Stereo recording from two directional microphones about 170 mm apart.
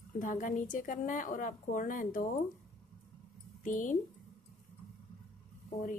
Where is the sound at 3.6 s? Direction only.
50° left (ahead or behind).